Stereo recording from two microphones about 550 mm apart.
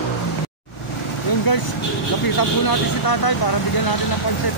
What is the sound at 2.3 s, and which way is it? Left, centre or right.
Speech, left.